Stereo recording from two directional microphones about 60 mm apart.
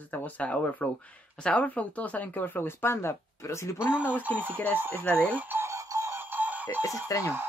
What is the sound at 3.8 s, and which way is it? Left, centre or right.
Speech, right.